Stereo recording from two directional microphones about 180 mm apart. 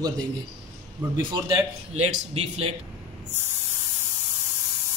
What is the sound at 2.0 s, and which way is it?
Speech, 35° right (ahead or behind).